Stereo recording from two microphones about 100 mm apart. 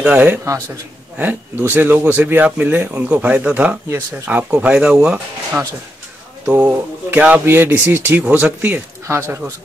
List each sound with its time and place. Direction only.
0.0 s speech: 15° right (ahead or behind)